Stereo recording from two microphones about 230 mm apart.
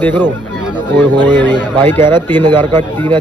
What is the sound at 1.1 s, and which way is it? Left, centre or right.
Speech, centre.